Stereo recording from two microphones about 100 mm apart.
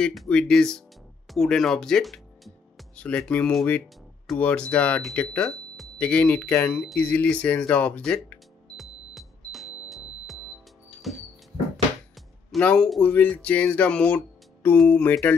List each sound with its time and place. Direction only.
0.0 s speech: centre (ahead or behind)
1.3 s music: centre (ahead or behind)
3.0 s speech: 10° left (ahead or behind)
8.7 s music: centre (ahead or behind)
12.4 s speech: 5° left (ahead or behind)